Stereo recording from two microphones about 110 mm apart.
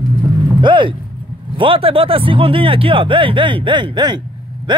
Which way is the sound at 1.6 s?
55° right (ahead or behind).